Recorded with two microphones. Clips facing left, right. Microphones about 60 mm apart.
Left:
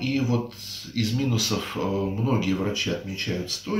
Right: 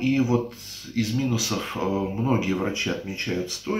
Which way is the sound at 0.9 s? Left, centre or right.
Centre.